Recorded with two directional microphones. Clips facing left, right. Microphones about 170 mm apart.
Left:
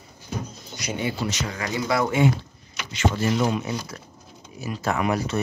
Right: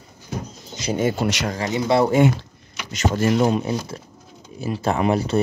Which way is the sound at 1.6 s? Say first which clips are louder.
Right 5 dB; 25° right (ahead or behind).